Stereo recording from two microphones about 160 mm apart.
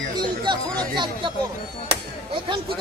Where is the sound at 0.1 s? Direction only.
30° right (ahead or behind).